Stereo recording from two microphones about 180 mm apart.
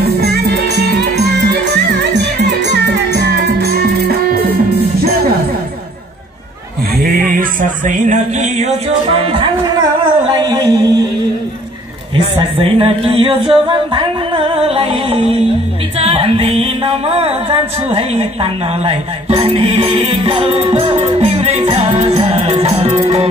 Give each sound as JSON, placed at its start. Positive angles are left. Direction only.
{"t": 0.0, "sound": "music", "side_deg": -65}
{"t": 7.8, "sound": "music", "side_deg": -40}
{"t": 9.1, "sound": "music", "side_deg": -30}
{"t": 12.5, "sound": "music", "side_deg": -30}